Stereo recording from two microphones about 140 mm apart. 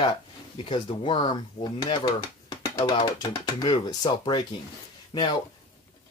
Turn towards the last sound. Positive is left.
turn(degrees=25)  # may be behind; listen again after turning